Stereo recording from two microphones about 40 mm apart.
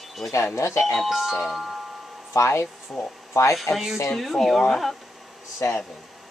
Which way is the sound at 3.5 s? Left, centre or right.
Centre.